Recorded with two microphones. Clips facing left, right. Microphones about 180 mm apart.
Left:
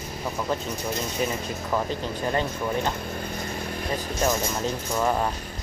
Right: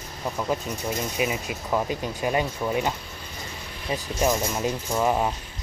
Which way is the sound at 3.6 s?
50° left (ahead or behind).